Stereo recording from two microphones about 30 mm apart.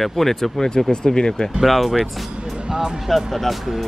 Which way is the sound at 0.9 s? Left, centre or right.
Left.